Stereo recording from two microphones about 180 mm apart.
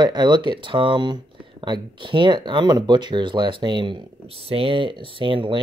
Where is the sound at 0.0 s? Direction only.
25° right (ahead or behind).